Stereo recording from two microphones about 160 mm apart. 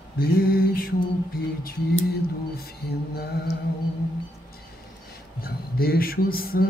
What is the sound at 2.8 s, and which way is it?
Mantra, 80° left.